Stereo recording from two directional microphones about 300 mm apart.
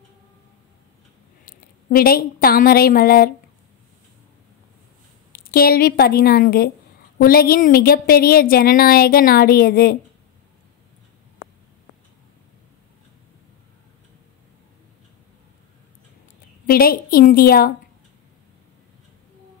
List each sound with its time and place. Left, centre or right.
1.4 s a woman's voice: left
5.3 s a woman's voice: left
16.6 s a woman's voice: left